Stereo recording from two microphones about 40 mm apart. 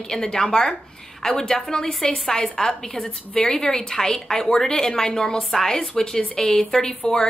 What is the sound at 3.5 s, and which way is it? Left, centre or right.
A woman's voice, centre.